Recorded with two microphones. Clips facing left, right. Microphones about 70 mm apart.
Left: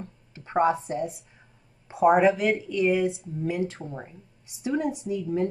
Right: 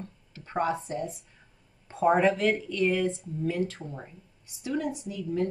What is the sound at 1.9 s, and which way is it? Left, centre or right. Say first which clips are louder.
Speech: left 4 dB; centre.